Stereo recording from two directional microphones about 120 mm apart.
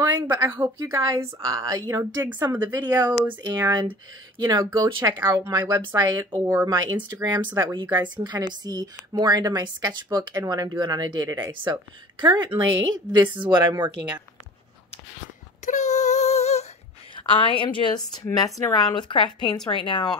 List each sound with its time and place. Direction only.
0.0 s a woman's voice: 25° right (ahead or behind)
15.6 s child singing: 80° left; by 16.6 s 65° left (ahead or behind)
17.1 s a woman's voice: 45° left (ahead or behind)